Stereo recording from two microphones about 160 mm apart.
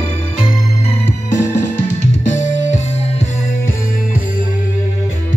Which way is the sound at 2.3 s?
50° left (ahead or behind).